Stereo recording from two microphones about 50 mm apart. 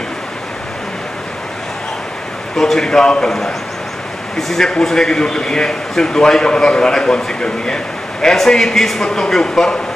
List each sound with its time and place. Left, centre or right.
2.5 s a man's voice: centre